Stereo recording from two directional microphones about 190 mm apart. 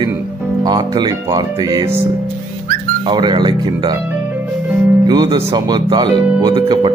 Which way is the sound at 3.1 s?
25° right (ahead or behind).